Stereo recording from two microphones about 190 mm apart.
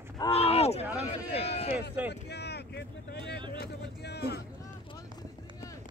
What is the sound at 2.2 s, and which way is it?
Boat, 60° left (ahead or behind).